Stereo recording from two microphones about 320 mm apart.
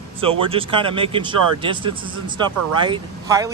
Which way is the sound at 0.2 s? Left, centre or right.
Centre.